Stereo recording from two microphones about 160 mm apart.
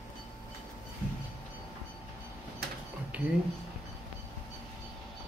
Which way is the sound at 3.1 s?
10° right (ahead or behind).